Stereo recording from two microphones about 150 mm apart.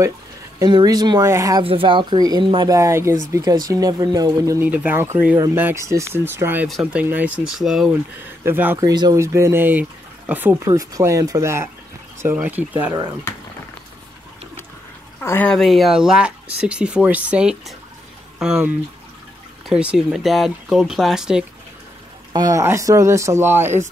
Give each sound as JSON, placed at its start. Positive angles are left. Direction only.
{"t": 0.6, "sound": "speech", "side_deg": -30}
{"t": 1.6, "sound": "speech", "side_deg": -35}
{"t": 4.6, "sound": "speech", "side_deg": -10}
{"t": 8.5, "sound": "speech", "side_deg": -15}
{"t": 8.8, "sound": "speech", "side_deg": -25}
{"t": 10.7, "sound": "speech", "side_deg": -25}
{"t": 15.1, "sound": "speech", "side_deg": 10}
{"t": 15.5, "sound": "speech", "side_deg": 0}
{"t": 19.7, "sound": "speech", "side_deg": -5}
{"t": 22.3, "sound": "speech", "side_deg": -25}